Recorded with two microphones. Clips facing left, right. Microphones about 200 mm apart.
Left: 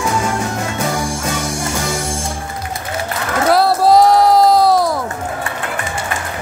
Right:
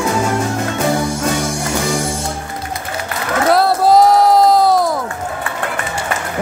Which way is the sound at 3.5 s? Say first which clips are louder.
Even; centre (ahead or behind).